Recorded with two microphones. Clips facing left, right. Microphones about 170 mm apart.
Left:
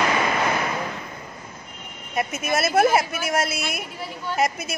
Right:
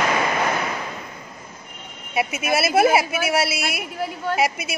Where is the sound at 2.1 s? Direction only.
5° right (ahead or behind).